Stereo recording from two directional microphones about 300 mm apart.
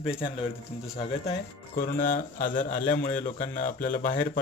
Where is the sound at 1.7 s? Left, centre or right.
Left.